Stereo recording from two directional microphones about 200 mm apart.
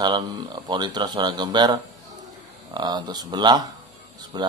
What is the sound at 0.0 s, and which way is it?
Speech, 20° right (ahead or behind).